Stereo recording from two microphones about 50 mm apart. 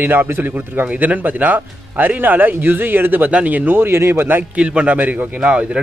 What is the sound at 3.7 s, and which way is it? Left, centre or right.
Speech, right.